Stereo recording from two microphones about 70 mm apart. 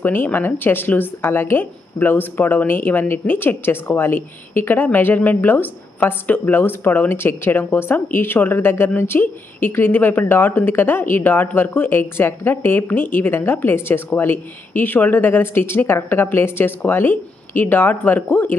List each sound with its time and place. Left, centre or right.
0.0 s a woman's voice: left